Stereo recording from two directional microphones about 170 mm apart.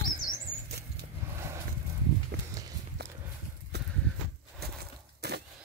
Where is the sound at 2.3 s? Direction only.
75° right (ahead or behind).